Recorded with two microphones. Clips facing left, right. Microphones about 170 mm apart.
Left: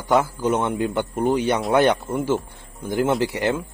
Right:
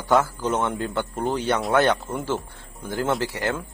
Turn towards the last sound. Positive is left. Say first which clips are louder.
# left 4 dB
turn(degrees=20)  # may be behind; listen again after turning